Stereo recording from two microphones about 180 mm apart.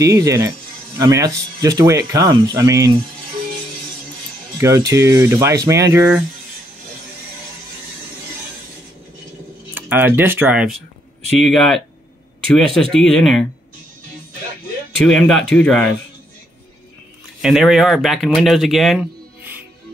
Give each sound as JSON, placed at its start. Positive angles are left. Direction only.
{"t": 0.0, "sound": "speech", "side_deg": -20}
{"t": 4.6, "sound": "speech", "side_deg": -15}
{"t": 9.8, "sound": "speech", "side_deg": -10}
{"t": 15.0, "sound": "speech", "side_deg": 5}
{"t": 17.4, "sound": "speech", "side_deg": 0}